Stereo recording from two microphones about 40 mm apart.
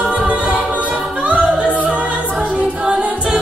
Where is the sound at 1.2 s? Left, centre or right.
Right.